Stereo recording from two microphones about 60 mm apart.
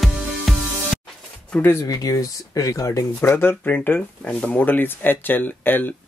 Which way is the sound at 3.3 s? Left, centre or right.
Left.